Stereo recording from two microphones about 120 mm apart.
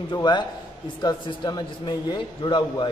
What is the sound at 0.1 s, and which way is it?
Speech, 40° left (ahead or behind).